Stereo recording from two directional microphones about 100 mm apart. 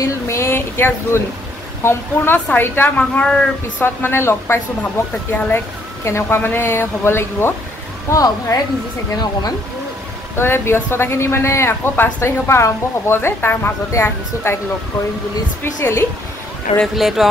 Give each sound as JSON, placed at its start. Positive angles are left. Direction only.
{"t": 0.0, "sound": "speech", "side_deg": 30}
{"t": 3.8, "sound": "speech", "side_deg": 25}
{"t": 6.0, "sound": "speech", "side_deg": 25}
{"t": 8.1, "sound": "speech", "side_deg": 35}
{"t": 10.3, "sound": "speech", "side_deg": 25}
{"t": 15.6, "sound": "speech", "side_deg": 25}
{"t": 16.7, "sound": "speech", "side_deg": 0}